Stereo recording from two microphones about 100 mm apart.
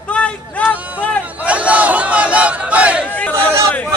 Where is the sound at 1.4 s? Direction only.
15° right (ahead or behind).